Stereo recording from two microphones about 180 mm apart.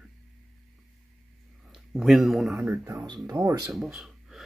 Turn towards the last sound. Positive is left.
turn(degrees=0)  # may be behind; listen again after turning